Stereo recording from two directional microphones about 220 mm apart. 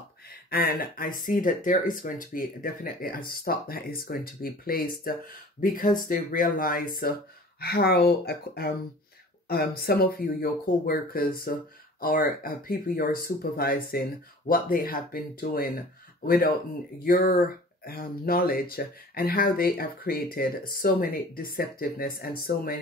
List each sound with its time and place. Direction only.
0.5 s speech: 45° left (ahead or behind)